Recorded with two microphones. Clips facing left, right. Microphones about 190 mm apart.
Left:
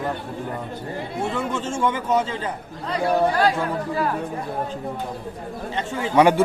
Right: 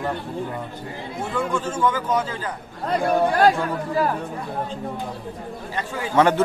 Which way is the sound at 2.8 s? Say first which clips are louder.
Even; 50° right (ahead or behind).